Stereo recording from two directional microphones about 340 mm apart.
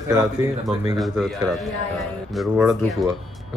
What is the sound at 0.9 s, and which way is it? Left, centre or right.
Speech, centre.